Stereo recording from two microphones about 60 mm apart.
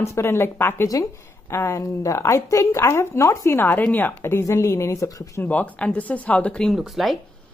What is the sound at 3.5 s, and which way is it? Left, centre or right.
Speech, left.